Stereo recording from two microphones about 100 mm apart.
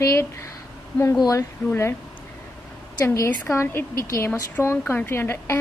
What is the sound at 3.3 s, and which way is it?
Speech, 25° left (ahead or behind).